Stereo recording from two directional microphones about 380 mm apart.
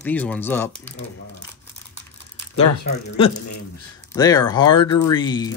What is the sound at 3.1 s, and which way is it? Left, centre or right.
Speech, centre.